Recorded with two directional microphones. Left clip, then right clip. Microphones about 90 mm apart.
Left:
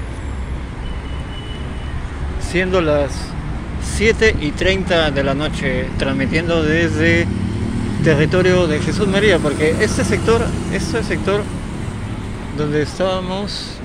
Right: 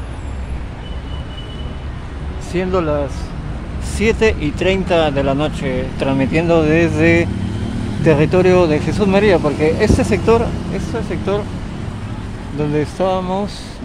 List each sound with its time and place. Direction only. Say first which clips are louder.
2.5 s speech: left 1 dB; 35° right (ahead or behind)
3.9 s speech: left 1 dB; 70° right (ahead or behind)
8.0 s speech: right 2 dB; 65° right (ahead or behind)
10.7 s speech: left 3 dB; 15° right (ahead or behind)
12.5 s speech: right 1 dB; 55° right (ahead or behind)